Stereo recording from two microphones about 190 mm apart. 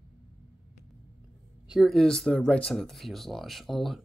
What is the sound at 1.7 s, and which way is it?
Speech, centre (ahead or behind).